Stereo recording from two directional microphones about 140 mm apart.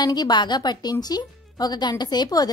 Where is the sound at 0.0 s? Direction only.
30° left (ahead or behind).